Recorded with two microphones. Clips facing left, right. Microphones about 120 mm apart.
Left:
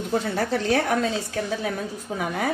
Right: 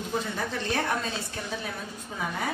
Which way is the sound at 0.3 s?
80° left.